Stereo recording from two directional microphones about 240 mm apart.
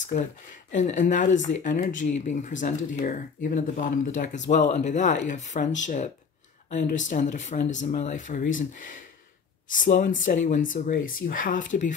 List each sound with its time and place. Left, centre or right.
0.7 s speech: left
6.7 s speech: left